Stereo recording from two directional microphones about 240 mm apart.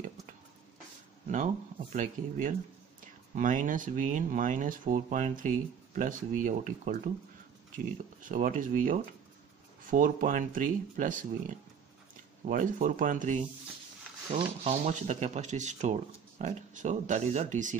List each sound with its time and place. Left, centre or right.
1.3 s speech: right